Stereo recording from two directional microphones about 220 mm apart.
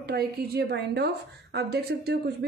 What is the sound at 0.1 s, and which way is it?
A woman's voice, 45° right (ahead or behind).